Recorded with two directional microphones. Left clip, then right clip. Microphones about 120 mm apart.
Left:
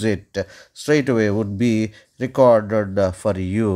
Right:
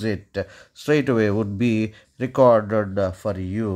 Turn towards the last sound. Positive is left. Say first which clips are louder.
# left 5 dB
turn(degrees=30)  # may be behind; listen again after turning